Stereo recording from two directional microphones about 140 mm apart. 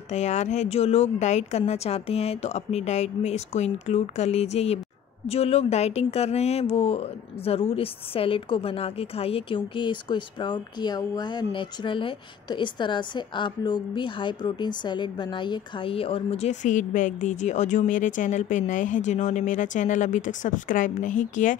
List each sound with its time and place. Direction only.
0.1 s speech: 55° left (ahead or behind)